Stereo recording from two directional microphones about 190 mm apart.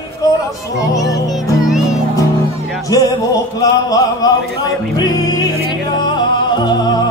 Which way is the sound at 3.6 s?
20° left (ahead or behind).